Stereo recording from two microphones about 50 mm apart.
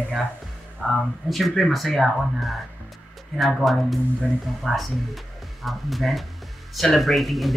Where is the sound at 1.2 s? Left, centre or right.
Centre.